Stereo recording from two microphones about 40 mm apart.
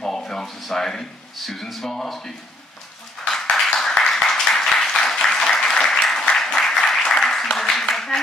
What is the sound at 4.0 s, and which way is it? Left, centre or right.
Applause, centre.